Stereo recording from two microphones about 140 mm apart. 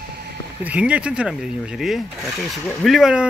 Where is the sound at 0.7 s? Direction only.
10° right (ahead or behind).